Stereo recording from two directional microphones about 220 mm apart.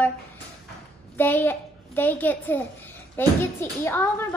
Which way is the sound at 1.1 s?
10° left (ahead or behind).